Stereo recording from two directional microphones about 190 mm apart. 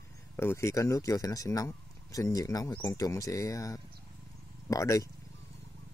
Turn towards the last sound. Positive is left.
turn(degrees=15)  # may be behind; listen again after turning